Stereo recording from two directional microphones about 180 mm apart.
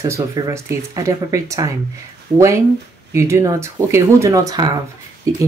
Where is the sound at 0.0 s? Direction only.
15° right (ahead or behind).